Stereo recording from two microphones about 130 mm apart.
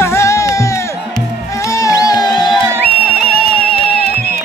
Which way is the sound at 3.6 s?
10° left (ahead or behind).